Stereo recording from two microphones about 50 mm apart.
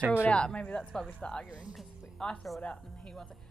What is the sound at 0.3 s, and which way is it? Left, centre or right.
A woman's voice, left.